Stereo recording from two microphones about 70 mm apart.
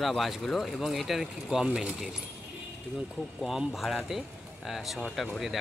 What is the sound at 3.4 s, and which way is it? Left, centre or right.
Speech, centre.